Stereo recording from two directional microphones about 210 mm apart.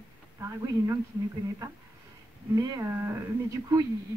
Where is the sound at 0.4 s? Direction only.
15° right (ahead or behind).